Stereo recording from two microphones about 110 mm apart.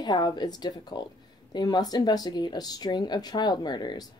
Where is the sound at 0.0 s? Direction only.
40° left (ahead or behind).